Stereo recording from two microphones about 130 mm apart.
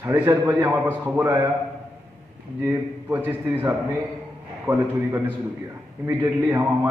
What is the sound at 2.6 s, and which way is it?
Speech, 20° right (ahead or behind).